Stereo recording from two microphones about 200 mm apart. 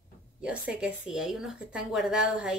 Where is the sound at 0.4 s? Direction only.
5° right (ahead or behind).